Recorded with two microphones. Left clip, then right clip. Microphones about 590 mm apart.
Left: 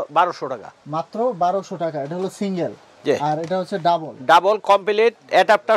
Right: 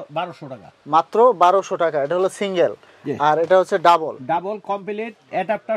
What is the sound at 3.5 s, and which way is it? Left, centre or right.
Speech, right.